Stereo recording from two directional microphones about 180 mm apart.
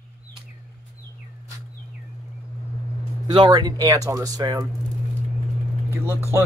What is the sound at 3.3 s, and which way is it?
Speech, 25° right (ahead or behind).